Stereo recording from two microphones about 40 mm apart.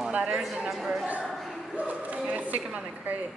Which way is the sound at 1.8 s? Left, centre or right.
Right.